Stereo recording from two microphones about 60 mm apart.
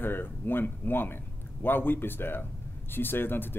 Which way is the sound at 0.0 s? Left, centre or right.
Left.